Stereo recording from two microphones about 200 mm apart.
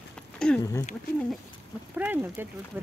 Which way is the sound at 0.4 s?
5° left (ahead or behind).